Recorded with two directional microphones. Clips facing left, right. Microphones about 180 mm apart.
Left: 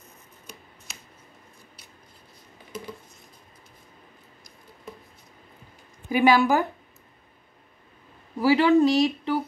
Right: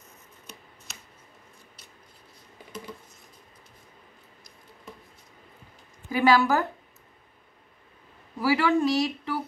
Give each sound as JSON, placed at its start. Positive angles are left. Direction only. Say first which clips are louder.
{"t": 6.0, "sound": "a woman's voice", "louder": "left 2 dB", "side_deg": 15}
{"t": 8.4, "sound": "speech", "louder": "left 5 dB", "side_deg": 25}